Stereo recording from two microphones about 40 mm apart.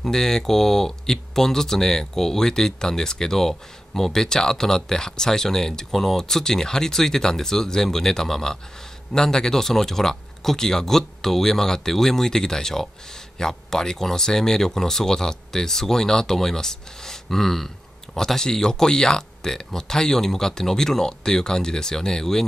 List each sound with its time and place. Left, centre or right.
0.0 s speech: centre